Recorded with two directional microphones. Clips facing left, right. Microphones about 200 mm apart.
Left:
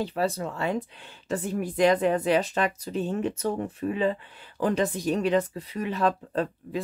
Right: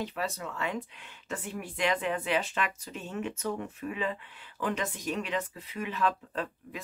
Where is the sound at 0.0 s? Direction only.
35° left (ahead or behind).